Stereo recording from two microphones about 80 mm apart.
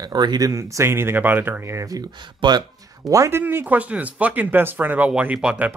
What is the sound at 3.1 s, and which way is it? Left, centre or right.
Speech, right.